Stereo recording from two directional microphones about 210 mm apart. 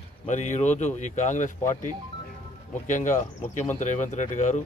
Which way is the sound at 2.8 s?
35° left (ahead or behind).